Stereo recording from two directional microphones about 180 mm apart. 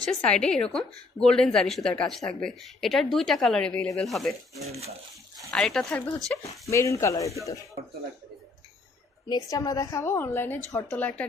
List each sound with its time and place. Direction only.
0.0 s speech: 5° left (ahead or behind)
4.6 s speech: 35° right (ahead or behind)
5.5 s speech: centre (ahead or behind)
6.7 s a woman's voice: 15° left (ahead or behind)
9.3 s a woman's voice: 20° left (ahead or behind)